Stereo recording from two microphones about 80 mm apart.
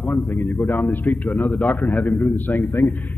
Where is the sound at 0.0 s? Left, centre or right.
Left.